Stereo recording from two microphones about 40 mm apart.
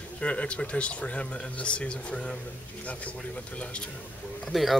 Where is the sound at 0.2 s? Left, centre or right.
Left.